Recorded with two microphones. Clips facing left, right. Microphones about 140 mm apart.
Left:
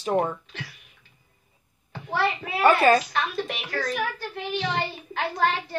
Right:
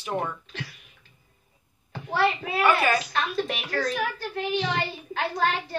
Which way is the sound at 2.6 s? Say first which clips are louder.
Left 5 dB; 35° left (ahead or behind).